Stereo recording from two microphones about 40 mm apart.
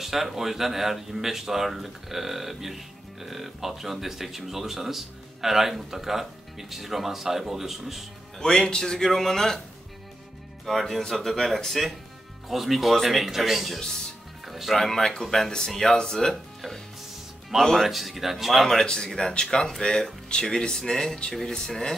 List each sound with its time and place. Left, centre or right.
0.0 s speech: centre
8.4 s speech: centre
10.6 s speech: centre
13.7 s speech: centre
14.4 s music: centre
14.8 s speech: centre
17.5 s speech: centre
19.0 s speech: centre